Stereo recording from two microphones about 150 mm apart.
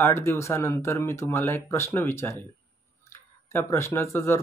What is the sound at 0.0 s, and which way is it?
Speech, 15° left (ahead or behind).